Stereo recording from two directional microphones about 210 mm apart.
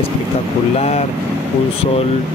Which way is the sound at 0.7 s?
30° left (ahead or behind).